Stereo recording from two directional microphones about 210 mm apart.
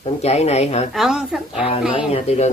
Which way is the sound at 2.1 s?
30° left (ahead or behind).